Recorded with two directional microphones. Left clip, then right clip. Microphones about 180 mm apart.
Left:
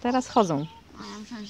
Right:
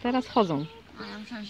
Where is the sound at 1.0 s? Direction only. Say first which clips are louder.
Right 1 dB; 20° right (ahead or behind).